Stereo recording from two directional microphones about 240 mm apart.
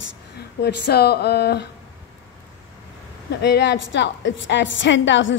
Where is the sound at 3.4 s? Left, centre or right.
Left.